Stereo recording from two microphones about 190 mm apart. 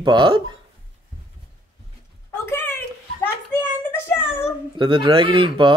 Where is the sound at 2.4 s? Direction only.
10° left (ahead or behind).